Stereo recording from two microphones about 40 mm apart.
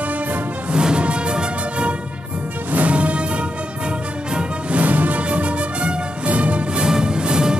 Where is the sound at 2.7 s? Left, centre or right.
Right.